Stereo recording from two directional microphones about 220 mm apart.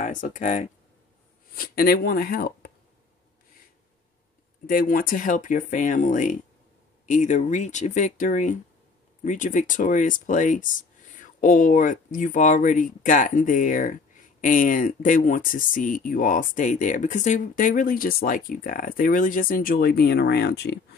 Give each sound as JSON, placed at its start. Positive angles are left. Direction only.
{"t": 0.0, "sound": "speech", "side_deg": 35}
{"t": 4.6, "sound": "speech", "side_deg": 40}